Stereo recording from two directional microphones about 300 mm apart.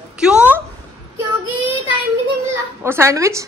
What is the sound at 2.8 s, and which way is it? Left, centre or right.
Speech, centre.